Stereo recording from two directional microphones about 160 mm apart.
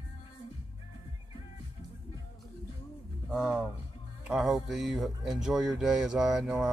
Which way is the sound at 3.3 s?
Centre (ahead or behind).